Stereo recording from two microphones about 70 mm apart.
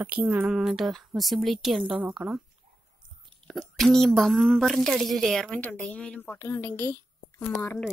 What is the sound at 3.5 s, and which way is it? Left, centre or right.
A woman's voice, centre.